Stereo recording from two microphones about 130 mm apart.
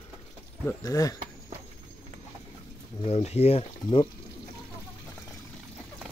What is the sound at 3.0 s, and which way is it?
Speech, 55° left (ahead or behind).